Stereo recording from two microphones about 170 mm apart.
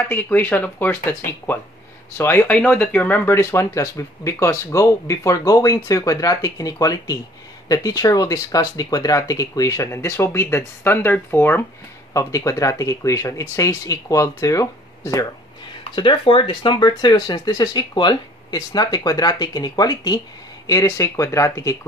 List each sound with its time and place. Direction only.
0.1 s speech: 10° left (ahead or behind)
15.8 s speech: 30° left (ahead or behind)